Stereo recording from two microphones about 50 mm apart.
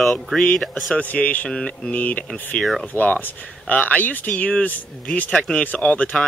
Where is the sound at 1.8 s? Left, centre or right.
Left.